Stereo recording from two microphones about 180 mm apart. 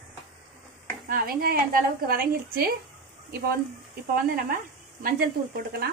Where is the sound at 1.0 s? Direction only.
55° right (ahead or behind).